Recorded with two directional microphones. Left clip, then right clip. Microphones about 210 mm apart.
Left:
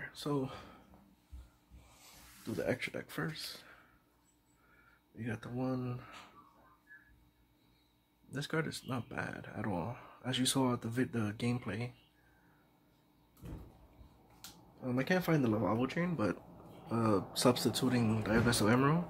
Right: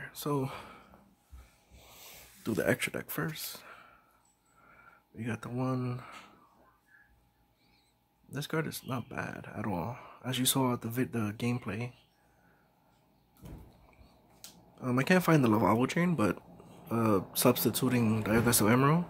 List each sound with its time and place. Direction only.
0.0 s speech: 20° right (ahead or behind)
2.4 s speech: 40° right (ahead or behind); by 3.8 s 20° right (ahead or behind)
5.1 s speech: 25° right (ahead or behind)
8.3 s speech: 15° right (ahead or behind)
14.8 s speech: 35° right (ahead or behind)